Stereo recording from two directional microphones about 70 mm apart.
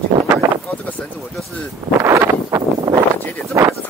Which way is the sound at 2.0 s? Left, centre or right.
Right.